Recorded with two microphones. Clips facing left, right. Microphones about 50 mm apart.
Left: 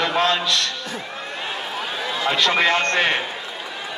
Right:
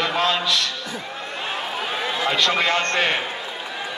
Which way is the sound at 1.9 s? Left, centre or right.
Centre.